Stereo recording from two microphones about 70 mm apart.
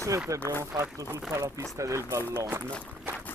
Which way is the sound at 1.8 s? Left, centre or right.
Right.